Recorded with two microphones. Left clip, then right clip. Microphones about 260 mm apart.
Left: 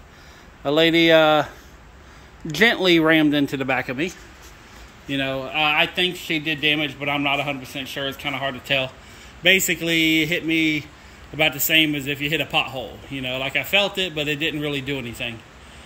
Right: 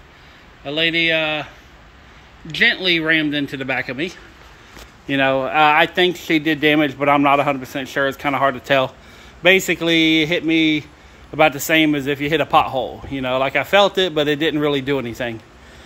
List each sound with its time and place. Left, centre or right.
0.7 s speech: centre
5.0 s a man's voice: centre